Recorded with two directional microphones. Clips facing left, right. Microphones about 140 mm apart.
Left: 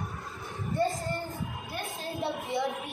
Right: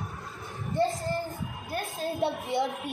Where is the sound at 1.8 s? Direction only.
Centre (ahead or behind).